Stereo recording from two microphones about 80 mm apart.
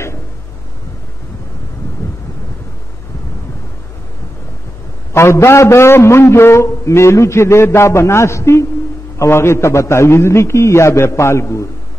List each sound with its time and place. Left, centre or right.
5.1 s a man's voice: left